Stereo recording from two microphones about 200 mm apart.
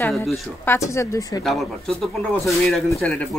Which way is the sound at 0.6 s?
15° left (ahead or behind).